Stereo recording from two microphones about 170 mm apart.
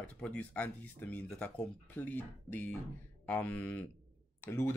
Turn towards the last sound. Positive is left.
turn(degrees=15)  # may be behind; listen again after turning